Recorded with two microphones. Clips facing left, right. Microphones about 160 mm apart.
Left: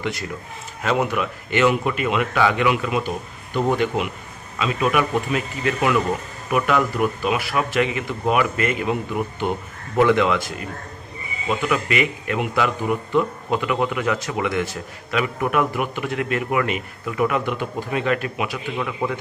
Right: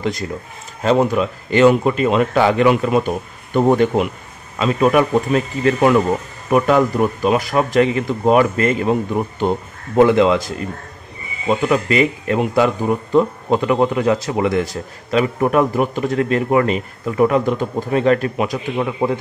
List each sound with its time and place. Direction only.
0.8 s speech: 35° right (ahead or behind)